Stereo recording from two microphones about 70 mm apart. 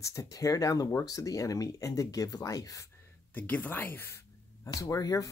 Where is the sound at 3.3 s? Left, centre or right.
Left.